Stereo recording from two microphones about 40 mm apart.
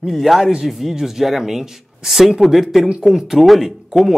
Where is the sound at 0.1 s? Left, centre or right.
Centre.